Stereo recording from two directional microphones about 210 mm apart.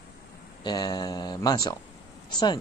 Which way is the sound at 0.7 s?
20° left (ahead or behind).